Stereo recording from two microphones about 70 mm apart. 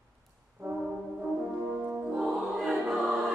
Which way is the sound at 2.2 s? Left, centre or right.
Centre.